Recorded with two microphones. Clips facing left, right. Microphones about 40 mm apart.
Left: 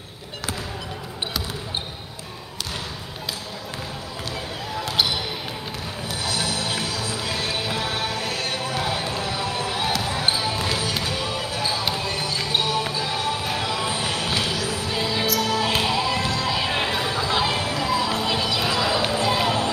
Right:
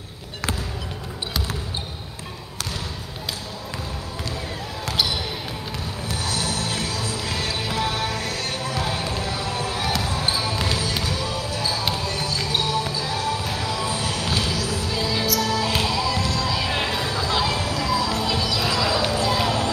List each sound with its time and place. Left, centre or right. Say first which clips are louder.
6.0 s music: left 1 dB; left
10.0 s basketball bounce: left 1 dB; left
15.2 s music: left 1 dB; left
15.7 s a sound: left 1 dB; left